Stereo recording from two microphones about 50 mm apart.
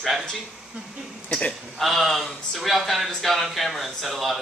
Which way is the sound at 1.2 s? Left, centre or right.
Centre.